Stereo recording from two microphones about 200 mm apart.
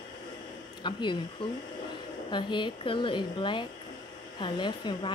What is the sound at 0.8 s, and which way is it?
Speech, 25° left (ahead or behind).